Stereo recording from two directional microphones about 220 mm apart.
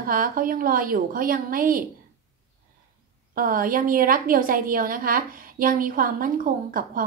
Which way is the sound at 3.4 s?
40° right (ahead or behind).